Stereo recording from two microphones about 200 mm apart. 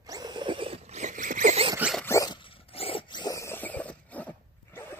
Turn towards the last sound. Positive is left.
turn(degrees=5)  # may be behind; listen again after turning